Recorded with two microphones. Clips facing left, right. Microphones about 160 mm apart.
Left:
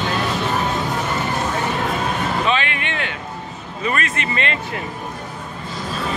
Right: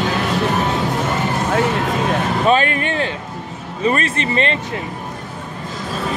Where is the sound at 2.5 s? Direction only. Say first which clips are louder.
Right 6 dB; 45° right (ahead or behind).